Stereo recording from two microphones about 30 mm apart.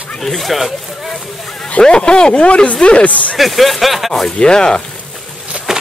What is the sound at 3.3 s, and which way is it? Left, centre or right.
Speech, centre.